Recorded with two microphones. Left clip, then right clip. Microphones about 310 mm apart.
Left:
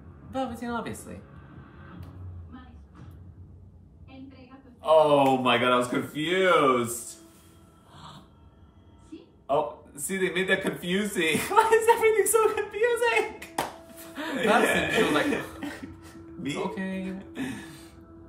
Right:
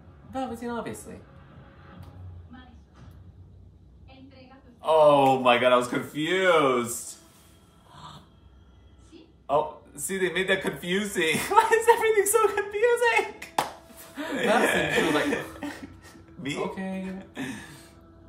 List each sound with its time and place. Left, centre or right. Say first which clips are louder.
0.3 s speech: left 1 dB; centre
4.8 s speech: right 1 dB; centre
7.9 s a sound: right 2 dB; centre
9.5 s speech: right 1 dB; centre
13.9 s cough: right 1 dB; centre